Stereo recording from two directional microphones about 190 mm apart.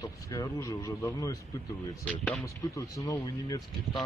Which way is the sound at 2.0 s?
5° left (ahead or behind).